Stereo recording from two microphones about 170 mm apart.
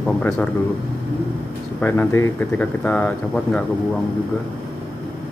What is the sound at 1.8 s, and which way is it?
Speech, 10° left (ahead or behind).